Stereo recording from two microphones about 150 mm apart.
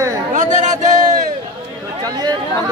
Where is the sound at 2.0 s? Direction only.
25° right (ahead or behind).